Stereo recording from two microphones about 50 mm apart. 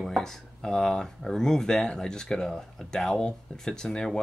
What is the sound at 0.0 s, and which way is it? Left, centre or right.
Speech, centre.